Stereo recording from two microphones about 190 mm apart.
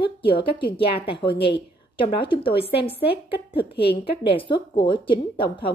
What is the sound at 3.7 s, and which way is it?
Speech, 60° left (ahead or behind).